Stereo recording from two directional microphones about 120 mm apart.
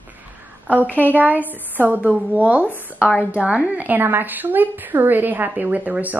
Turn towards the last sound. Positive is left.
turn(degrees=-15)  # may be behind; listen again after turning